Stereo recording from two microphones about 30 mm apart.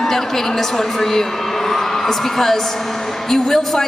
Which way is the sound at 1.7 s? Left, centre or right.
Centre.